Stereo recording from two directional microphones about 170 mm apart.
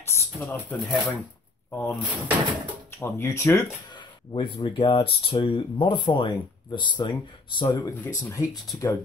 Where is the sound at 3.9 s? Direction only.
30° left (ahead or behind).